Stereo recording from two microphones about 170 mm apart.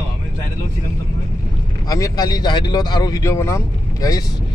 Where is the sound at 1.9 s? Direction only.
20° left (ahead or behind).